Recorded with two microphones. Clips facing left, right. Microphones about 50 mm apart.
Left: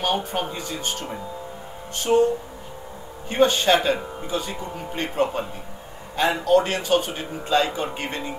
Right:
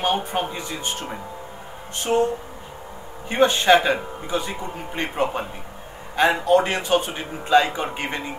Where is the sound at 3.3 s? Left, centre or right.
Right.